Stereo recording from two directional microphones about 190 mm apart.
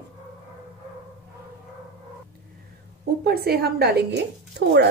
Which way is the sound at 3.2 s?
55° right (ahead or behind).